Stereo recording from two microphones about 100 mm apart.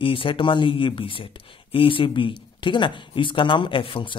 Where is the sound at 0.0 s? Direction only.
60° left (ahead or behind).